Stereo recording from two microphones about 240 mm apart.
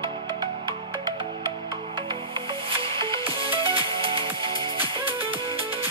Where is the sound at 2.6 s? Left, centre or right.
Right.